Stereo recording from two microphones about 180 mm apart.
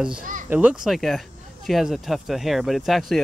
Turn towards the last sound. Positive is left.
turn(degrees=0)  # may be behind; listen again after turning